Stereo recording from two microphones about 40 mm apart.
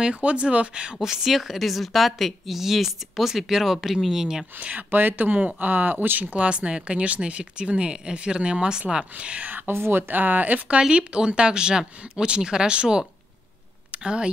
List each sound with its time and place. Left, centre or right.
0.0 s speech: right
1.0 s a woman's voice: centre
4.6 s speech: right
6.3 s a woman's voice: right
9.1 s speech: right
9.7 s speech: right
10.8 s a woman's voice: right
14.0 s a woman's voice: right